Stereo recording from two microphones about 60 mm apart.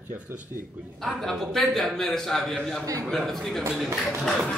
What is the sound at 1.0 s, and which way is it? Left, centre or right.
A man's voice, centre.